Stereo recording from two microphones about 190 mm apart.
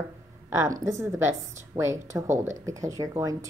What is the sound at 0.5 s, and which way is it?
Speech, 15° right (ahead or behind).